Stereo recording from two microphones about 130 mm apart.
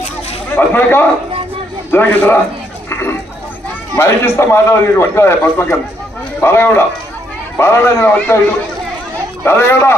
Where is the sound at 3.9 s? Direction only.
20° left (ahead or behind).